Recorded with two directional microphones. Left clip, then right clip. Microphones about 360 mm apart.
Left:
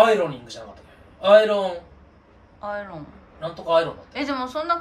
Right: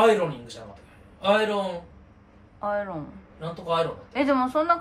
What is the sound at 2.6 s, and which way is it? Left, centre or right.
A woman's voice, centre.